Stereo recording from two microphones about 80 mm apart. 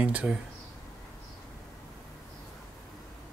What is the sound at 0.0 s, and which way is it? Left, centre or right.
Speech, centre.